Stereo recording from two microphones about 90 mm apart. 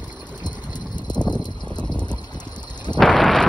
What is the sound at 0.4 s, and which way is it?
Vehicle, 55° left (ahead or behind).